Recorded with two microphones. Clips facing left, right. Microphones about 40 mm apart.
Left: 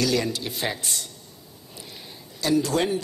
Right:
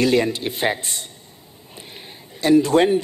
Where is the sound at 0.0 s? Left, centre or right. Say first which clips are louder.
Right 6 dB; right.